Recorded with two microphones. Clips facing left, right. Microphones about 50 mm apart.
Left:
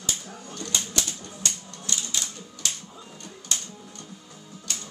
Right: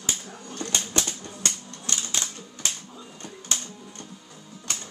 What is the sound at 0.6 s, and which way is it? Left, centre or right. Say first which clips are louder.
Typewriter: right 2 dB; right.